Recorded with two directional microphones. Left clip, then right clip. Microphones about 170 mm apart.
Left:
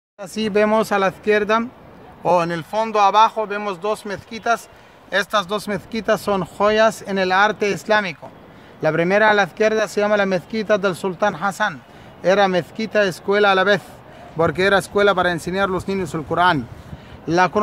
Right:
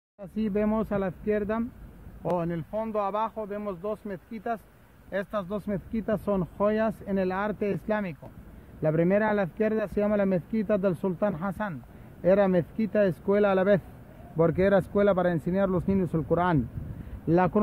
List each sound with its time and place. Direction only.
0.2 s speech: 40° right (ahead or behind)